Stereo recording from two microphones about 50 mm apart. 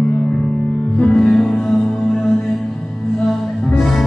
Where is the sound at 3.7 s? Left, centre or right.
Centre.